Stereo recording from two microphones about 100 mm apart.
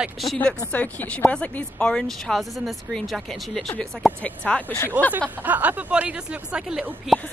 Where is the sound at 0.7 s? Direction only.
15° left (ahead or behind).